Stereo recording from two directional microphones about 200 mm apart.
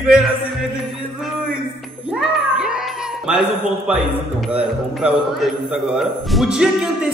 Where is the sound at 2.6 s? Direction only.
5° right (ahead or behind).